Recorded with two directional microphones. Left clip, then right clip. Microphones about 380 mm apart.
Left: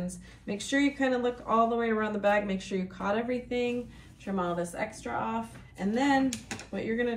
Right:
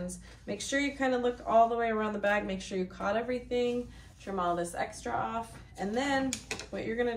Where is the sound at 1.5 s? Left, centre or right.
Right.